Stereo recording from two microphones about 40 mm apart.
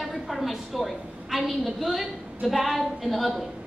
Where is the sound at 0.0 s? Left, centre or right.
Centre.